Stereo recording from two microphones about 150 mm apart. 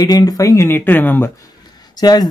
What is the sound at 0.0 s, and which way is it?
A man's voice, 25° left (ahead or behind).